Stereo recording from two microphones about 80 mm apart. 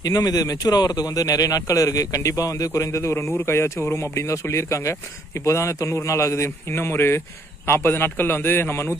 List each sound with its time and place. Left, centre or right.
0.0 s a man's voice: left